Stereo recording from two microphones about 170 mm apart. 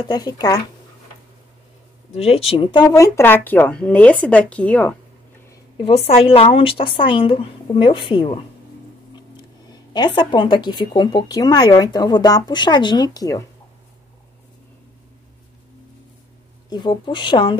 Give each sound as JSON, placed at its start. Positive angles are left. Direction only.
{"t": 0.0, "sound": "speech", "side_deg": 25}
{"t": 2.1, "sound": "a woman's voice", "side_deg": 35}
{"t": 2.9, "sound": "speech", "side_deg": 15}
{"t": 5.8, "sound": "a woman's voice", "side_deg": 35}
{"t": 16.6, "sound": "speech", "side_deg": 25}